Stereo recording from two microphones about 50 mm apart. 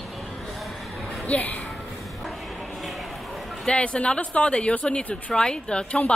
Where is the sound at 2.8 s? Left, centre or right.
Centre.